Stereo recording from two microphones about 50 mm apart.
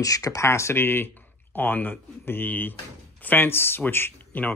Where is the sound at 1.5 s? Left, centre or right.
Left.